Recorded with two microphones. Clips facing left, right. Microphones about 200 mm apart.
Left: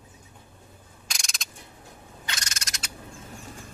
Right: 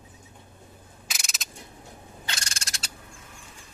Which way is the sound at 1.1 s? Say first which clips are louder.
Even; 5° right (ahead or behind).